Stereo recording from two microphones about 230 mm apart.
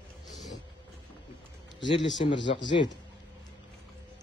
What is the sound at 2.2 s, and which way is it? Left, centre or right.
Speech, left.